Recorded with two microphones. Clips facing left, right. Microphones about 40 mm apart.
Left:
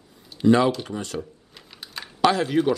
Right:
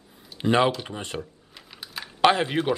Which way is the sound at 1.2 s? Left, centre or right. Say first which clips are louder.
Left 3 dB; centre.